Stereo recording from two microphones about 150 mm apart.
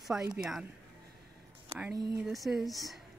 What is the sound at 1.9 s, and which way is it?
Speech, 25° right (ahead or behind).